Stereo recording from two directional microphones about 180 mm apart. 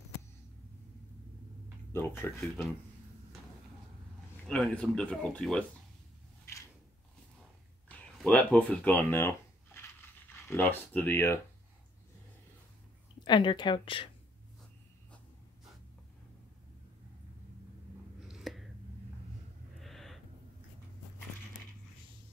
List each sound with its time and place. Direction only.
1.9 s speech: 15° left (ahead or behind)
2.4 s speech: centre (ahead or behind)
4.5 s speech: 5° left (ahead or behind)
7.9 s speech: 5° left (ahead or behind)
10.5 s speech: 10° left (ahead or behind)
13.2 s speech: 25° left (ahead or behind)
18.3 s a sound: centre (ahead or behind)
19.8 s gasp: centre (ahead or behind)